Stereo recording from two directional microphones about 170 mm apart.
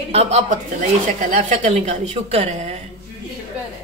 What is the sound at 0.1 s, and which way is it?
A woman's voice, 40° right (ahead or behind).